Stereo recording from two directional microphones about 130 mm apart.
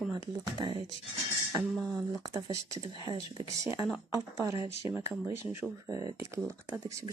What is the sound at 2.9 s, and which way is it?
Speech, 35° right (ahead or behind).